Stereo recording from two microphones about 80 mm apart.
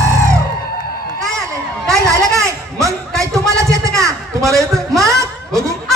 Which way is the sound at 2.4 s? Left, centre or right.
Right.